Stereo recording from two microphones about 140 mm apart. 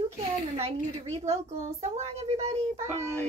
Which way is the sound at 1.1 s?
50° right (ahead or behind).